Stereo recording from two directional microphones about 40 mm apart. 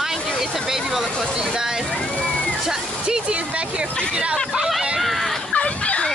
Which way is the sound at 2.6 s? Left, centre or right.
Centre.